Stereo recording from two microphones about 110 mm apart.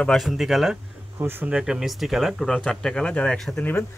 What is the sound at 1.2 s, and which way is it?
Speech, 20° right (ahead or behind).